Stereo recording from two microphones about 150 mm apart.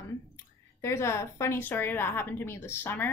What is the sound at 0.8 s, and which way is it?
A woman's voice, 20° left (ahead or behind).